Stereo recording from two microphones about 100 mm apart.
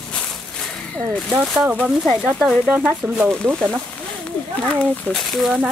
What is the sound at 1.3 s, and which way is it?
Speech, 15° right (ahead or behind).